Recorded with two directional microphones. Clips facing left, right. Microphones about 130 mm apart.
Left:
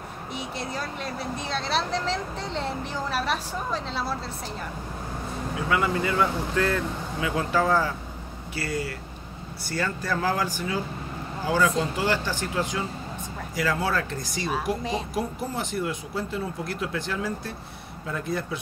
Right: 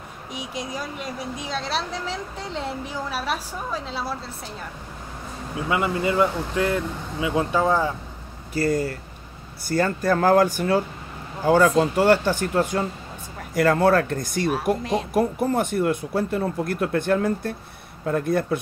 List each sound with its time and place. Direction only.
0.3 s a woman's voice: 10° right (ahead or behind)
5.7 s speech: 20° right (ahead or behind)
8.5 s speech: 45° right (ahead or behind)